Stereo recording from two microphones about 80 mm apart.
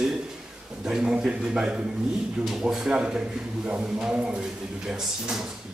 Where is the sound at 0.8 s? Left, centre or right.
Centre.